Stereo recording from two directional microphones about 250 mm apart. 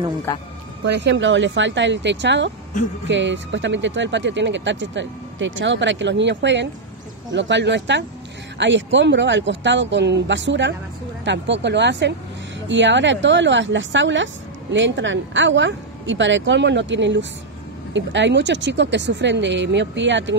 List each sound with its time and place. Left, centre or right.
0.3 s speech: centre
0.8 s a woman's voice: right